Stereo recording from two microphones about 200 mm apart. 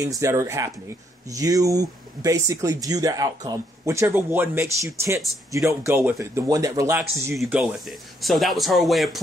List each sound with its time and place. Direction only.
0.0 s speech: 15° right (ahead or behind); by 9.2 s centre (ahead or behind)